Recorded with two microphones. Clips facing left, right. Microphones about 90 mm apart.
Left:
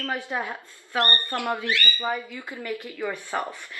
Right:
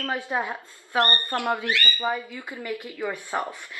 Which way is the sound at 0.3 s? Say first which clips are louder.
Right 2 dB; 20° right (ahead or behind).